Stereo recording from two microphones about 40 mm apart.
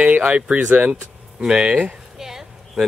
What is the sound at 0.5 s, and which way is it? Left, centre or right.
Speech, right.